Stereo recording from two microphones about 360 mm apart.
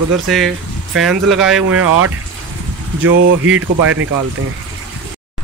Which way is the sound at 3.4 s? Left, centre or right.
Right.